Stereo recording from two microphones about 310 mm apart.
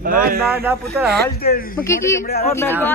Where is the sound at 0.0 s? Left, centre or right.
Right.